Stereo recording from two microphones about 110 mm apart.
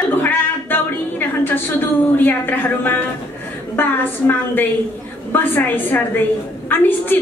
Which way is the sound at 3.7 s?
20° left (ahead or behind).